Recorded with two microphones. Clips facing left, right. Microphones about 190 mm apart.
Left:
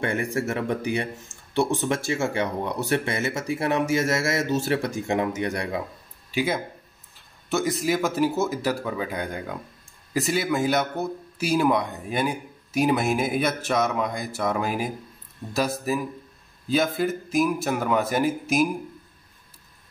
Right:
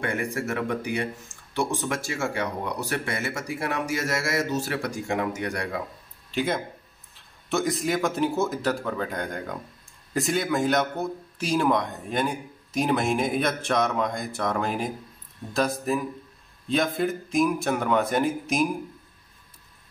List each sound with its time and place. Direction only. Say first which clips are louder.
0.0 s speech: left 3 dB; 25° left (ahead or behind)
6.3 s speech: left 1 dB; 5° left (ahead or behind)